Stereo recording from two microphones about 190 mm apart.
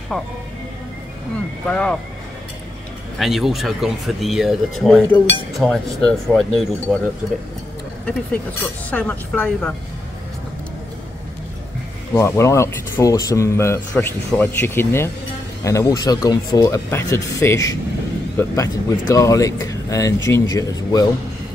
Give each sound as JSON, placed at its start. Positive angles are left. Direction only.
{"t": 0.1, "sound": "speech", "side_deg": 5}
{"t": 1.7, "sound": "speech", "side_deg": 5}
{"t": 3.2, "sound": "speech", "side_deg": 0}
{"t": 4.8, "sound": "speech", "side_deg": 10}
{"t": 8.9, "sound": "speech", "side_deg": 10}
{"t": 12.2, "sound": "speech", "side_deg": 15}